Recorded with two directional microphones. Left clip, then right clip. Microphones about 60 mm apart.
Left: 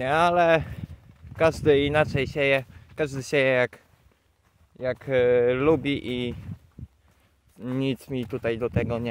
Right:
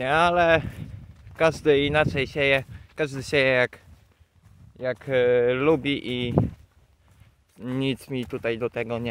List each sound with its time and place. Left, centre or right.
0.2 s speech: left
5.1 s speech: left
5.8 s speech: left
7.5 s speech: left
8.4 s speech: left